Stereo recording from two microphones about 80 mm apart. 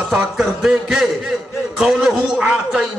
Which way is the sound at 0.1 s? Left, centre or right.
Centre.